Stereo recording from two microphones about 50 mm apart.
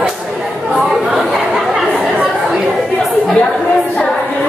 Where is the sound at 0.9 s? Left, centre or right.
Centre.